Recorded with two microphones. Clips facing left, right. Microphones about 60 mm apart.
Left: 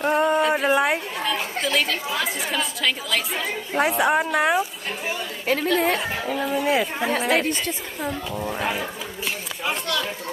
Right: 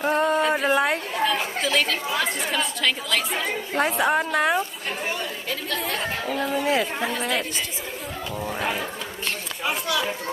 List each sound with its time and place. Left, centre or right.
0.0 s speech: centre
7.2 s speech: left
8.4 s speech: centre
9.7 s a sound: centre